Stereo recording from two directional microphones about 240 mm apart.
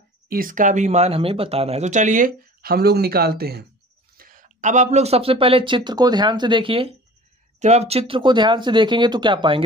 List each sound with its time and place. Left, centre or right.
0.3 s speech: right; by 9.6 s centre